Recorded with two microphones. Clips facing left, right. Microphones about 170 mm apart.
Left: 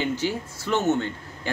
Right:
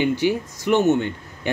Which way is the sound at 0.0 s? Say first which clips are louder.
Right 6 dB; 15° right (ahead or behind).